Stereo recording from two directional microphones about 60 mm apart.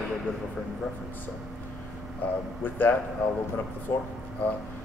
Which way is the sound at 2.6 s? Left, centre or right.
Left.